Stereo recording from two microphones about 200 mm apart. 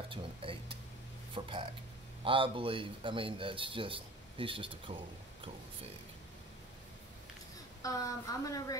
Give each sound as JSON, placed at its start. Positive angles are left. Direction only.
{"t": 0.1, "sound": "a sound", "side_deg": -25}
{"t": 1.3, "sound": "a man's voice", "side_deg": -25}
{"t": 7.8, "sound": "a woman's voice", "side_deg": 15}